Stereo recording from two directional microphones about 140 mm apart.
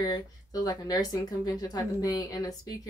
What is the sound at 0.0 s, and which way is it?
Speech, 25° left (ahead or behind).